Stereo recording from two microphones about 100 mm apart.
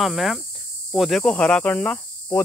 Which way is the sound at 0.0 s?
Centre (ahead or behind).